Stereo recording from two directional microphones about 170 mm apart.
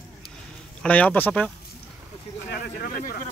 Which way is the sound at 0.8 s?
10° left (ahead or behind).